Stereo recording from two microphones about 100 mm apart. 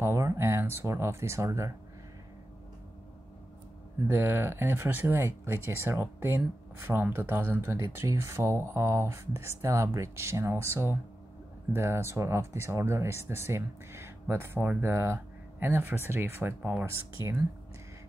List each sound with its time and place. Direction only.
0.0 s speech: 25° right (ahead or behind)
4.1 s speech: 20° right (ahead or behind)